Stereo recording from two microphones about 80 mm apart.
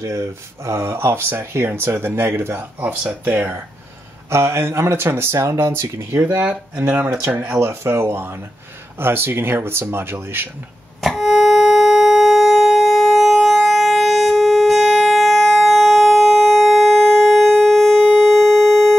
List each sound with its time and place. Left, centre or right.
0.0 s speech: right
4.3 s speech: right
6.9 s speech: centre
7.3 s speech: right
11.0 s a sound: centre